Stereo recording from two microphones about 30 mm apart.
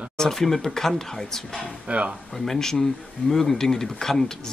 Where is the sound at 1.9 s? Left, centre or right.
Right.